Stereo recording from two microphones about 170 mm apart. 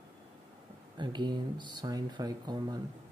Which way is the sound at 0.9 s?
25° right (ahead or behind).